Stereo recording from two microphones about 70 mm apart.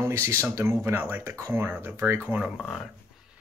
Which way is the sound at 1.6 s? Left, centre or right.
Right.